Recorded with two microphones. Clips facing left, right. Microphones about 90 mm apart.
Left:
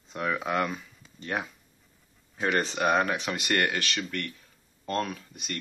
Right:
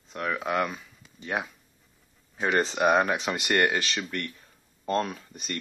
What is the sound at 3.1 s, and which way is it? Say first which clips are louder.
Speech: right 2 dB; 30° right (ahead or behind).